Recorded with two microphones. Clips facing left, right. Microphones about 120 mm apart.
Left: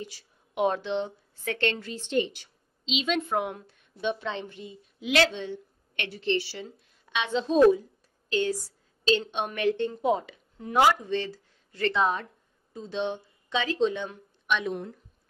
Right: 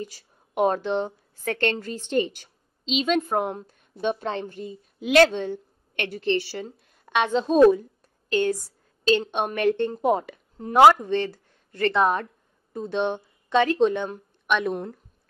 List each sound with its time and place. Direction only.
0.0 s a woman's voice: 45° right (ahead or behind)